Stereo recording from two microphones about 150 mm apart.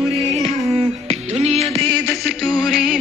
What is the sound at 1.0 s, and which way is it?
Music, 45° right (ahead or behind).